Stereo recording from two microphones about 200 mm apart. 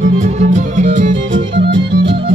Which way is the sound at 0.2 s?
35° right (ahead or behind).